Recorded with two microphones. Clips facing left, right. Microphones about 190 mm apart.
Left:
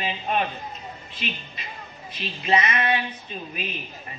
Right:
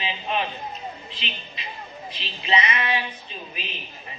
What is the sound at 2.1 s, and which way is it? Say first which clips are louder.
Speech: left 2 dB; 50° left (ahead or behind).